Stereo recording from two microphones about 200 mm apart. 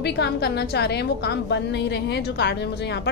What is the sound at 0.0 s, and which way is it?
A woman's voice, 55° left (ahead or behind).